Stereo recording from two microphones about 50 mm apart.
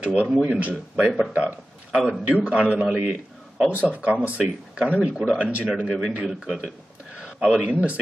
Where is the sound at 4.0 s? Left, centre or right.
Right.